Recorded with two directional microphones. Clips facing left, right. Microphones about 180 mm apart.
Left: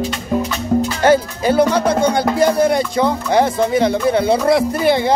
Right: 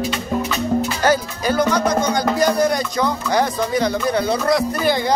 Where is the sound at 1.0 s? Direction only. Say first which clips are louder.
Left 5 dB; 25° left (ahead or behind).